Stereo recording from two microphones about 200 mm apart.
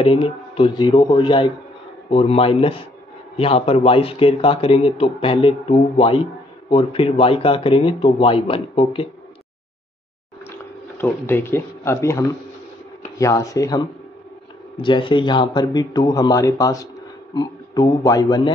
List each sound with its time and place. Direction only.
0.0 s a man's voice: 25° left (ahead or behind)
11.0 s a man's voice: 10° left (ahead or behind)